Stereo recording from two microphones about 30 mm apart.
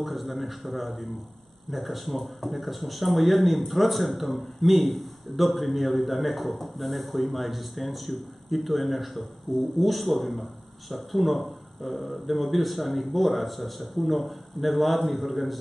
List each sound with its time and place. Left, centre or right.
0.0 s speech: centre